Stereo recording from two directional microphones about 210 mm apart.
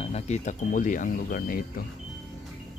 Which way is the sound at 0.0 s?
30° left (ahead or behind).